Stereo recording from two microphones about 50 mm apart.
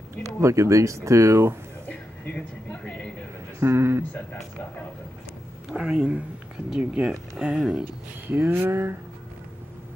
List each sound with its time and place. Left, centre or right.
0.4 s speech: right
1.9 s a sound: left
3.5 s speech: right
4.1 s speech: left
5.7 s speech: centre
8.3 s a sound: right